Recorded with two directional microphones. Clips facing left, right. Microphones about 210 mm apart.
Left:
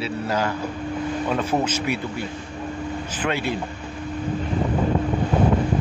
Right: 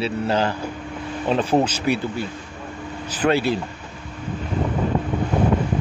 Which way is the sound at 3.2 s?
35° right (ahead or behind).